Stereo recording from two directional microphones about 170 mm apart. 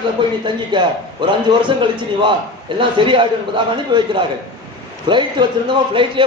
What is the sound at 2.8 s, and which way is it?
A man's voice, 30° right (ahead or behind).